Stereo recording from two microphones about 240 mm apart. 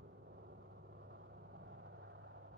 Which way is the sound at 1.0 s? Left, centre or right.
Right.